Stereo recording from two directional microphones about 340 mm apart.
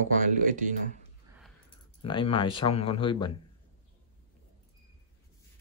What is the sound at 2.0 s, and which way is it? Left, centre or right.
Speech, centre.